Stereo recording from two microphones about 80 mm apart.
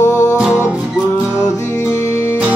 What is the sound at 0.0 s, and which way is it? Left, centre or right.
Music, left.